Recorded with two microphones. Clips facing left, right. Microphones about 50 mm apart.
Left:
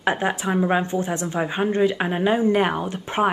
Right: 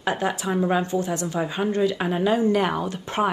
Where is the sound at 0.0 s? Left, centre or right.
Left.